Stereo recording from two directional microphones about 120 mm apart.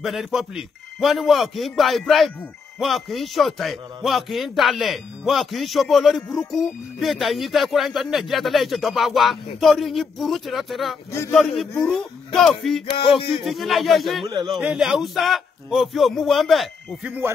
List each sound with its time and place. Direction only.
0.0 s a man's voice: centre (ahead or behind)
11.1 s a man's voice: 20° left (ahead or behind)
11.3 s a man's voice: centre (ahead or behind)